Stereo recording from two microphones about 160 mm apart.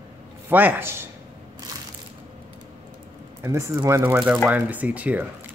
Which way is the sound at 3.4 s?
15° right (ahead or behind).